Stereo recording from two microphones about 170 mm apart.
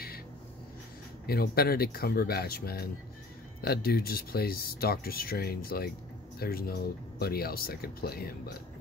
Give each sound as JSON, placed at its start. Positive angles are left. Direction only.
{"t": 1.2, "sound": "speech", "side_deg": 65}